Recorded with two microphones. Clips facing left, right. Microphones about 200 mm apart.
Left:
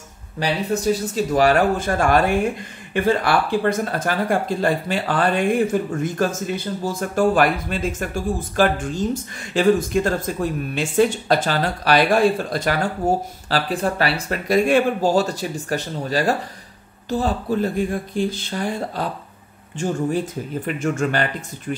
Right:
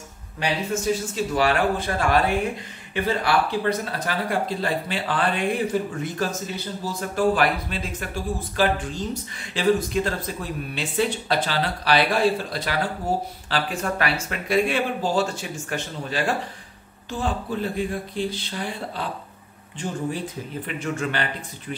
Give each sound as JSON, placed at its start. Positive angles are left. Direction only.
{"t": 0.4, "sound": "speech", "side_deg": 35}
{"t": 13.5, "sound": "speech", "side_deg": 35}
{"t": 20.6, "sound": "speech", "side_deg": 45}